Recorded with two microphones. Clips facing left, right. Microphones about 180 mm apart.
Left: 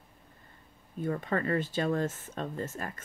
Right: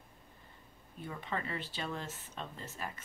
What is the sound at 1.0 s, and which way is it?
Speech, 50° left (ahead or behind).